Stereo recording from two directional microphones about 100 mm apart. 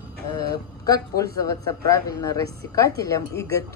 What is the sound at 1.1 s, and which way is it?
A woman's voice, 35° left (ahead or behind).